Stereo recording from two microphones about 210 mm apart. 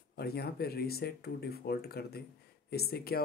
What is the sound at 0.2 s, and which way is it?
Speech, 50° left (ahead or behind).